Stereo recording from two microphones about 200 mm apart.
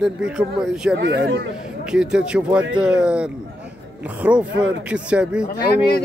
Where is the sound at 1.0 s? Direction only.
60° right (ahead or behind).